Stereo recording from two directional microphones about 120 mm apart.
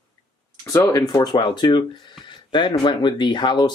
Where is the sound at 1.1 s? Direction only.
40° left (ahead or behind).